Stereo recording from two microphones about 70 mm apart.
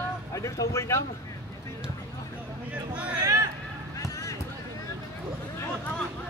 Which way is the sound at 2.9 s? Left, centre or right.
Centre.